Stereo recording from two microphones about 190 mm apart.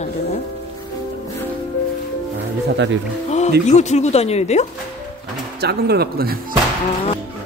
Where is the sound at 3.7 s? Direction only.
40° left (ahead or behind).